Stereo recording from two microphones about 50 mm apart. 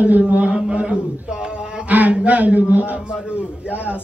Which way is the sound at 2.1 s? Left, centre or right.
Right.